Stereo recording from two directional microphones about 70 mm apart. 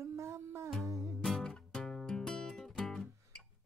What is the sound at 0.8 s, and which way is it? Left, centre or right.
Music, right.